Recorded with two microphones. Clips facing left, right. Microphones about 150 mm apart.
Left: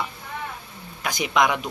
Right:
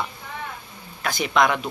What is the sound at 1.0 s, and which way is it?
Speech, 15° left (ahead or behind).